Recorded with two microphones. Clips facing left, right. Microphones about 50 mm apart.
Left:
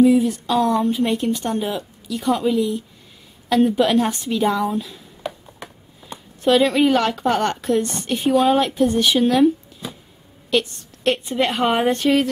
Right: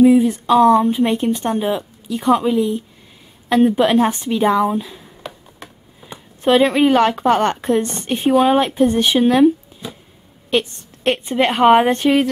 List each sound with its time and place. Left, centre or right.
0.0 s a woman's voice: right
6.0 s a sound: centre
6.4 s a woman's voice: right
10.5 s a woman's voice: right